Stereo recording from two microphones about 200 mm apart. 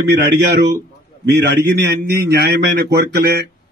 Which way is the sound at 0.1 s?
50° right (ahead or behind).